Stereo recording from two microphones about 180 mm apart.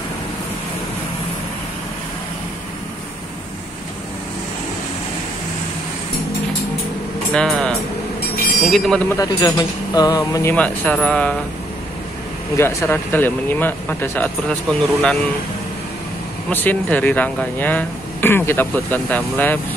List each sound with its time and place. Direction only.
7.3 s speech: 5° left (ahead or behind)
9.1 s speech: 20° left (ahead or behind)
10.5 s speech: 5° left (ahead or behind)
12.5 s speech: 10° left (ahead or behind)
16.4 s speech: 10° left (ahead or behind)